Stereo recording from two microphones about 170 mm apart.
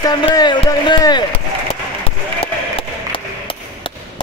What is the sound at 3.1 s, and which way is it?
Chop, 30° left (ahead or behind).